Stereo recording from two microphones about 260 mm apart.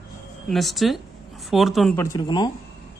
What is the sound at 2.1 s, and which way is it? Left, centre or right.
Speech, centre.